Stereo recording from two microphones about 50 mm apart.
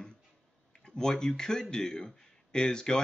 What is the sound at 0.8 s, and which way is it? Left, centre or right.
Speech, centre.